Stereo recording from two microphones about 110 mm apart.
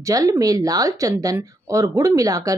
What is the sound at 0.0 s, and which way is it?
Speech, 30° right (ahead or behind).